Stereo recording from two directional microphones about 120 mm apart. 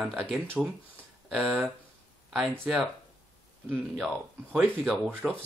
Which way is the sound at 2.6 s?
10° right (ahead or behind).